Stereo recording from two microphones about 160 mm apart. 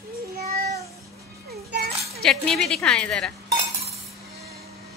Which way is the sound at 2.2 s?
5° left (ahead or behind).